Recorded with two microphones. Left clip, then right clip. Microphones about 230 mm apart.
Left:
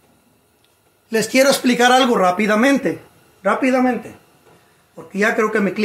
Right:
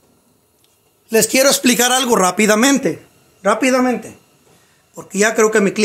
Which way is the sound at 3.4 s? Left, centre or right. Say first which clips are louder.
Right 2 dB; right.